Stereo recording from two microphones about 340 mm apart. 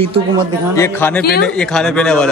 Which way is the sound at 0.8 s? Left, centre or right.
Centre.